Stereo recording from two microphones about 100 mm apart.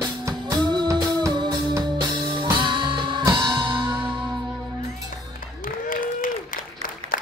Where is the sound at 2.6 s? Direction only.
50° right (ahead or behind).